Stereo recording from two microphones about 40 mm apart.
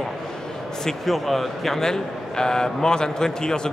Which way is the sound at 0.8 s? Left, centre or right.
Centre.